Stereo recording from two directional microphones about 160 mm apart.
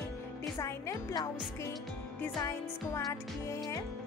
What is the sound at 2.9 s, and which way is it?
Music, 20° left (ahead or behind).